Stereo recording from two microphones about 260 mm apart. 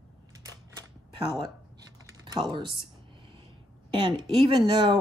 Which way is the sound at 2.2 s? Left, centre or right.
Centre.